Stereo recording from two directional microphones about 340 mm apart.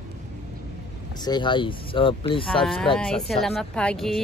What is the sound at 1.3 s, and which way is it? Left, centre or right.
Speech, centre.